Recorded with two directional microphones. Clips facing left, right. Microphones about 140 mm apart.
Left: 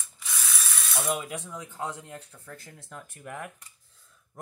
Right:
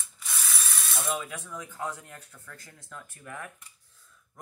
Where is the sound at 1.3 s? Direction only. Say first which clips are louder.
Left 2 dB; 30° left (ahead or behind).